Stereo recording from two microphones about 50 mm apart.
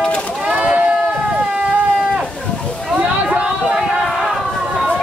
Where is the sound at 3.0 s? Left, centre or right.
Right.